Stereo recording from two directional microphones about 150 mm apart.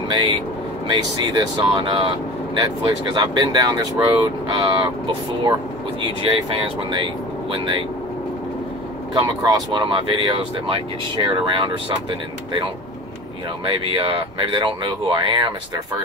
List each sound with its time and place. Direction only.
1.3 s speech: 30° right (ahead or behind)
9.1 s speech: 30° right (ahead or behind)
13.7 s speech: 35° right (ahead or behind)